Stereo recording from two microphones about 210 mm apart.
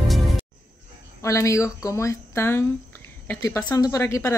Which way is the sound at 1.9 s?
15° left (ahead or behind).